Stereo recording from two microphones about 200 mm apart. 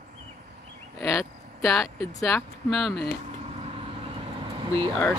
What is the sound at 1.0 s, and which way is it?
Speech, 15° left (ahead or behind).